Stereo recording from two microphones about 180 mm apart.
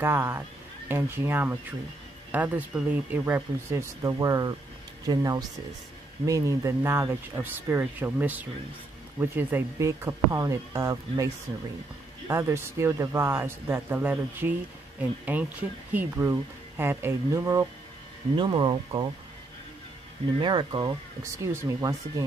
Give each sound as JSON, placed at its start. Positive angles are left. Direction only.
{"t": 0.0, "sound": "speech", "side_deg": -10}
{"t": 12.3, "sound": "speech", "side_deg": -15}
{"t": 20.3, "sound": "speech", "side_deg": -25}
{"t": 21.2, "sound": "speech", "side_deg": -15}